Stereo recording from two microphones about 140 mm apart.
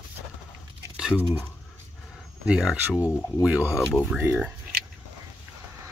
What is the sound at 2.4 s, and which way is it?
Speech, 5° right (ahead or behind).